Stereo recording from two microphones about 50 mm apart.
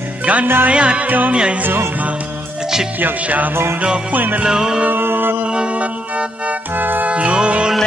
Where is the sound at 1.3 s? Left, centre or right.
Centre.